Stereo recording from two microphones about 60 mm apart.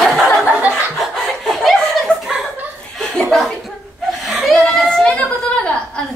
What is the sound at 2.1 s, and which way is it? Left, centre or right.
Chuckle, centre.